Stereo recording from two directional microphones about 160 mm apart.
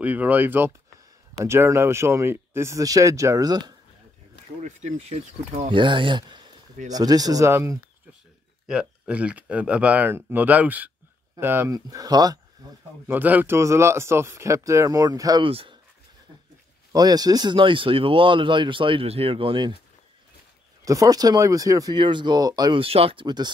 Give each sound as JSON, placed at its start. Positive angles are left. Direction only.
{"t": 0.0, "sound": "speech", "side_deg": -10}
{"t": 4.6, "sound": "speech", "side_deg": -45}
{"t": 8.6, "sound": "speech", "side_deg": -5}
{"t": 13.0, "sound": "speech", "side_deg": -10}
{"t": 15.4, "sound": "speech", "side_deg": -35}
{"t": 16.9, "sound": "speech", "side_deg": -25}
{"t": 20.8, "sound": "speech", "side_deg": -20}